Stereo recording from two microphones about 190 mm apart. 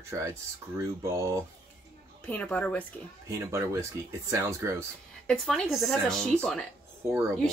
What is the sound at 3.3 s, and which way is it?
Speech, 15° right (ahead or behind).